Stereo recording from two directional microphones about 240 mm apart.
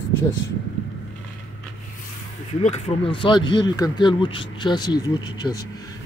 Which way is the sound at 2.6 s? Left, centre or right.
Left.